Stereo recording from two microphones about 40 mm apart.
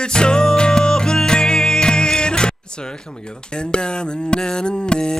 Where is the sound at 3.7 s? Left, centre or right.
Left.